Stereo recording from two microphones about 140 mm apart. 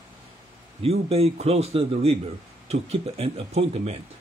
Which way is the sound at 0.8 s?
45° right (ahead or behind).